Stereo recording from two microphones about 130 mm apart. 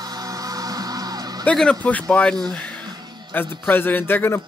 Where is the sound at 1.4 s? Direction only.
5° left (ahead or behind).